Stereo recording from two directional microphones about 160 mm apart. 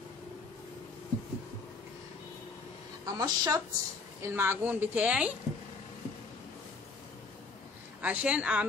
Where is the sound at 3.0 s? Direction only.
20° right (ahead or behind).